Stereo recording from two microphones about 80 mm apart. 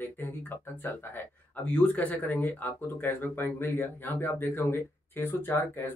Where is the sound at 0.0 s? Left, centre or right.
Left.